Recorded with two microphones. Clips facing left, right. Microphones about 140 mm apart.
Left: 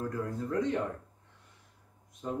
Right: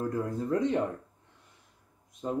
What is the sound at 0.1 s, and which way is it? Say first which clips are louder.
Speech: right 4 dB; 20° right (ahead or behind).